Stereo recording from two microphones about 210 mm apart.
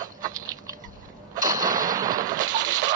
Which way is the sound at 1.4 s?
20° right (ahead or behind).